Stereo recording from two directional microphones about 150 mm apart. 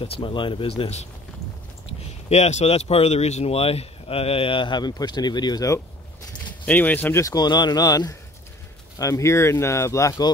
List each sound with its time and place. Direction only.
0.0 s speech: 35° left (ahead or behind)
2.2 s speech: 45° left (ahead or behind); by 5.8 s 25° left (ahead or behind)
6.6 s speech: 10° left (ahead or behind)